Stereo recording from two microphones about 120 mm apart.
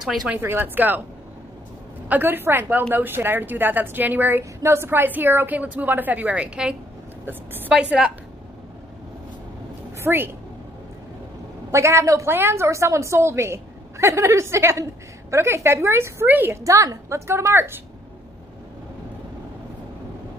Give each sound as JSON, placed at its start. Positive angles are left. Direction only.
{"t": 0.0, "sound": "speech", "side_deg": -5}
{"t": 0.4, "sound": "a woman's voice", "side_deg": -15}
{"t": 2.0, "sound": "a woman's voice", "side_deg": -15}
{"t": 10.0, "sound": "a woman's voice", "side_deg": -20}
{"t": 11.7, "sound": "a woman's voice", "side_deg": -25}